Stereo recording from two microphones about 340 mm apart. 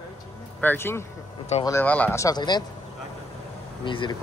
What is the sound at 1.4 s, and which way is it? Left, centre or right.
Speech, centre.